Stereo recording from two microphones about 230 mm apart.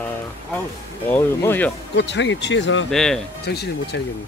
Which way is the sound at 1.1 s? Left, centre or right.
Centre.